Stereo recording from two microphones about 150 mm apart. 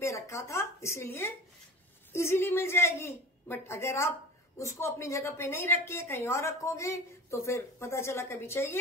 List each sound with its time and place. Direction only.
0.0 s a woman's voice: 20° left (ahead or behind)